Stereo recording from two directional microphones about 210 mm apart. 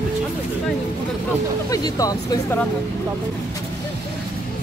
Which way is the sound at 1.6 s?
15° left (ahead or behind).